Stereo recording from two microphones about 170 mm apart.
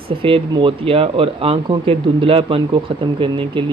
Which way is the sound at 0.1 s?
30° right (ahead or behind).